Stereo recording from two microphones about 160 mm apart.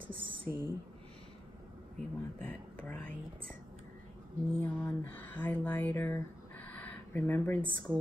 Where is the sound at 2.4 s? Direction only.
10° left (ahead or behind).